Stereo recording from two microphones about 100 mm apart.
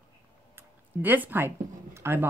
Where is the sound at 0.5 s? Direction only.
20° right (ahead or behind).